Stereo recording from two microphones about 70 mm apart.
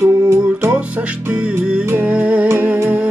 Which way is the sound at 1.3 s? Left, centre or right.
Centre.